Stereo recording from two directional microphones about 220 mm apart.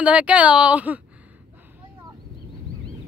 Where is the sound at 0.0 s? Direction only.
5° right (ahead or behind).